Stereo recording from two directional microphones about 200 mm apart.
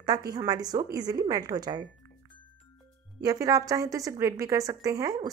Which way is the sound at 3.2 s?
15° right (ahead or behind).